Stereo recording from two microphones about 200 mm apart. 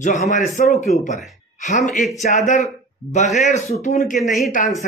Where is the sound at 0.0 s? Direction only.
40° left (ahead or behind).